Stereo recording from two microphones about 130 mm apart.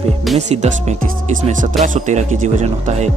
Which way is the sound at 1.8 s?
75° right (ahead or behind).